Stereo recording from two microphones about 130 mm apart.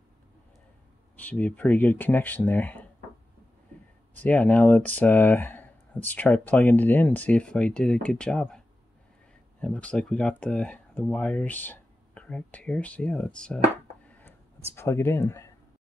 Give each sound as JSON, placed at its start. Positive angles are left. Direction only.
{"t": 1.1, "sound": "speech", "side_deg": 10}
{"t": 4.2, "sound": "speech", "side_deg": 10}
{"t": 14.0, "sound": "a sound", "side_deg": 10}